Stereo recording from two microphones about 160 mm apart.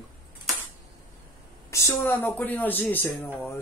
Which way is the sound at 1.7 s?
15° left (ahead or behind).